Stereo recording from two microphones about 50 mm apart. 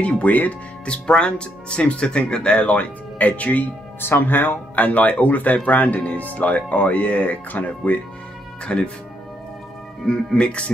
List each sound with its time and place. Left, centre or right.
0.0 s speech: left
0.8 s speech: centre
4.0 s speech: left
8.6 s speech: left
10.0 s speech: centre